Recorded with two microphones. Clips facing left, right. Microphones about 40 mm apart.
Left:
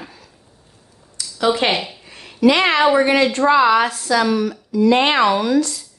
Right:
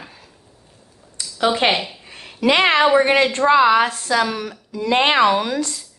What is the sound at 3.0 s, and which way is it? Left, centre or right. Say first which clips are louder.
Speech: left 1 dB; right.